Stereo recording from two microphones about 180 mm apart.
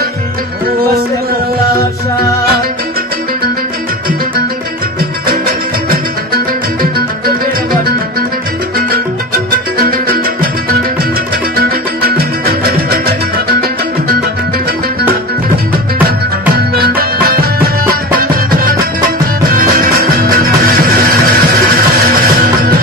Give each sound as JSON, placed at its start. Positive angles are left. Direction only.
{"t": 5.9, "sound": "music", "side_deg": -55}
{"t": 9.8, "sound": "music", "side_deg": -55}
{"t": 11.5, "sound": "music", "side_deg": -55}
{"t": 16.7, "sound": "music", "side_deg": -55}